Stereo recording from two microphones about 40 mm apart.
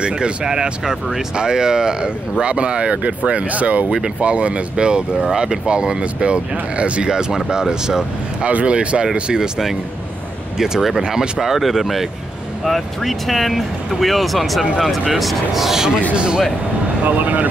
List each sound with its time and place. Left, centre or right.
0.0 s speech: right
8.5 s speech: right
10.6 s speech: centre
16.2 s speech: right
17.0 s speech: right